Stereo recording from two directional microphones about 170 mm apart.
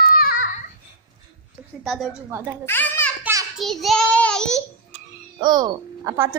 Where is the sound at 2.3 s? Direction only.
10° right (ahead or behind).